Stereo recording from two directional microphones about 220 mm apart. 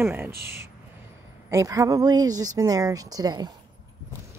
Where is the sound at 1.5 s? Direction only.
15° right (ahead or behind).